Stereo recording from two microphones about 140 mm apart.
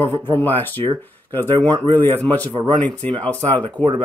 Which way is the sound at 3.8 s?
10° left (ahead or behind).